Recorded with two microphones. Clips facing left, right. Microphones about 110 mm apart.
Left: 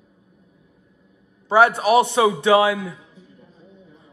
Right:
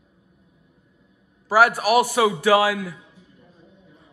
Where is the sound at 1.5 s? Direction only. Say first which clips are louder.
Left 2 dB; 25° left (ahead or behind).